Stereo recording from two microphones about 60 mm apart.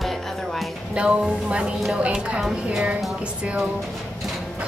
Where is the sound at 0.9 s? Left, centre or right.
Centre.